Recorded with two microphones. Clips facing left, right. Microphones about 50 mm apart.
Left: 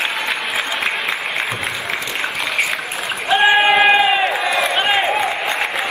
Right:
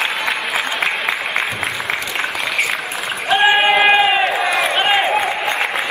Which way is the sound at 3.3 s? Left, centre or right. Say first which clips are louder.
Even; centre.